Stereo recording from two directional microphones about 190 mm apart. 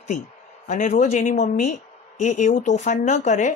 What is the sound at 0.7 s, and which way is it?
Speech, 40° left (ahead or behind).